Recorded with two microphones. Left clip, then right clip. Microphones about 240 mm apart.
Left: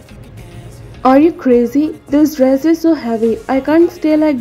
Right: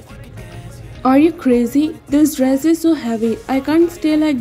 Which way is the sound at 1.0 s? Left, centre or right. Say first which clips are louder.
Left 3 dB; right.